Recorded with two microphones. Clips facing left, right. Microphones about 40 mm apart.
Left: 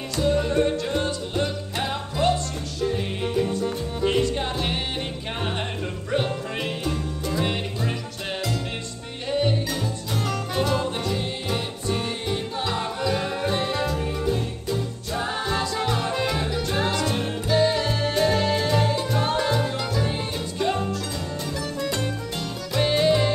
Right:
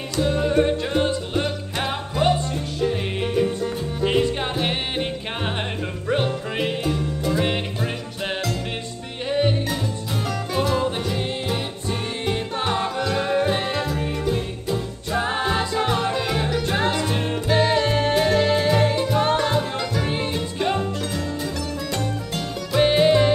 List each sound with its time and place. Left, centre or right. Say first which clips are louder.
0.2 s music: right 2 dB; centre
4.0 s music: right 2 dB; right
6.6 s music: right 7 dB; centre
9.3 s music: right 2 dB; right
10.5 s music: right 3 dB; centre
12.3 s music: right 6 dB; right
15.1 s music: right 4 dB; right
16.2 s music: right 1 dB; centre
16.6 s music: right 1 dB; right
17.5 s music: right 2 dB; right
19.5 s music: right 2 dB; centre
20.0 s music: right 3 dB; right
21.7 s music: even; centre
22.8 s music: right 4 dB; right